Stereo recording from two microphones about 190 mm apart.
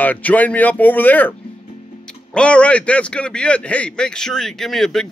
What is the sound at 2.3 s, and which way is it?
A man's voice, 5° left (ahead or behind).